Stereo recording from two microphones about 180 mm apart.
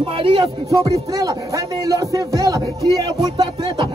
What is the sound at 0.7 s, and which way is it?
Music, 20° right (ahead or behind).